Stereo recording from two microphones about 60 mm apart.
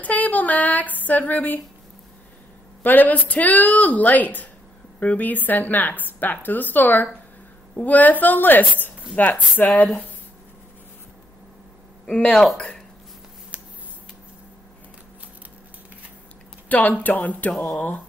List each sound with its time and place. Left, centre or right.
0.0 s female singing: left
2.8 s a woman's voice: left
12.1 s speech: centre
16.6 s speech: left
17.5 s speech: centre
17.7 s speech: left